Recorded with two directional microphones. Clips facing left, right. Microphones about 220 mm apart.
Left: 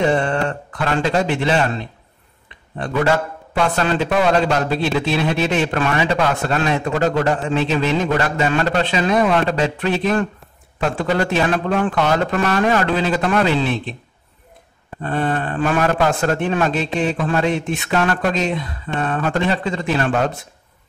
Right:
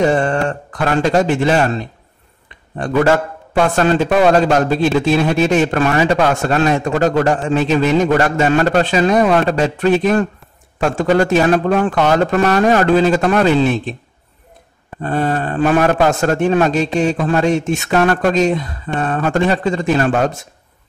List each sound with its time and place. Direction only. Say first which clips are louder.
0.0 s a man's voice: right 3 dB; 45° right (ahead or behind)
15.0 s a man's voice: right 3 dB; 40° right (ahead or behind)